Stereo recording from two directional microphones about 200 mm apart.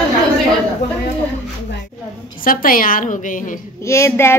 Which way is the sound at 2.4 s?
45° left (ahead or behind).